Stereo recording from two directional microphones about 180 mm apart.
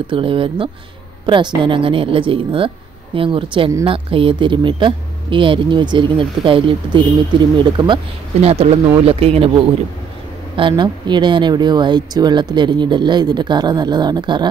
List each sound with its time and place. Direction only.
0.0 s speech: 30° right (ahead or behind)